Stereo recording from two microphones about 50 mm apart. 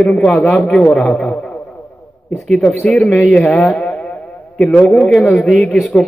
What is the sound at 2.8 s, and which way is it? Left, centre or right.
Speech, centre.